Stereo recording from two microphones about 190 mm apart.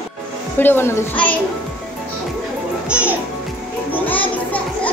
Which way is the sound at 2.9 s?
5° right (ahead or behind).